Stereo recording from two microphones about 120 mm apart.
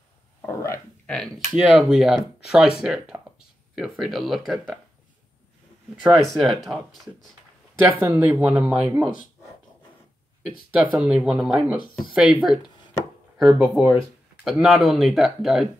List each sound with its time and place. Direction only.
0.5 s speech: 25° left (ahead or behind)
1.0 s speech: 5° left (ahead or behind)
6.0 s speech: centre (ahead or behind)
8.0 s speech: 15° right (ahead or behind)
10.8 s speech: 5° right (ahead or behind)
13.6 s speech: 10° right (ahead or behind)